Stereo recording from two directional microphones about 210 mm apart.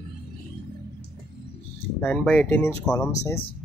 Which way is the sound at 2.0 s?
5° left (ahead or behind).